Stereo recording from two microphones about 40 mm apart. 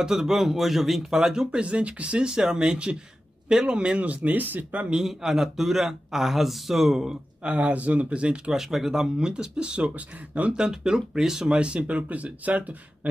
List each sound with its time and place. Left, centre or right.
0.0 s speech: centre
1.2 s speech: centre
1.6 s speech: right
2.2 s speech: centre
4.0 s speech: right
5.0 s speech: centre
7.4 s speech: right
8.5 s speech: centre
9.1 s speech: right
10.5 s speech: centre
12.1 s speech: right